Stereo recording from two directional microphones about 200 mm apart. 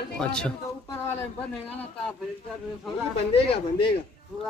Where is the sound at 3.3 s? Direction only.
30° left (ahead or behind).